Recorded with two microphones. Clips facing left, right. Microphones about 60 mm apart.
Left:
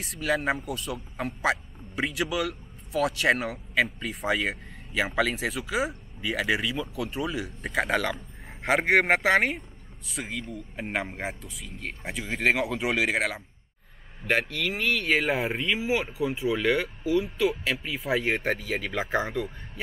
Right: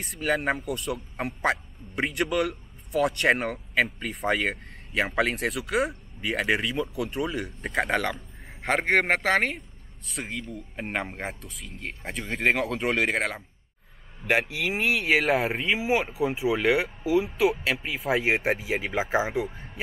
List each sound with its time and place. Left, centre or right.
0.0 s speech: centre
15.7 s speech: centre